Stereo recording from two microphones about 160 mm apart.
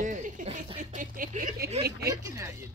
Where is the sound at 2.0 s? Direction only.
20° right (ahead or behind).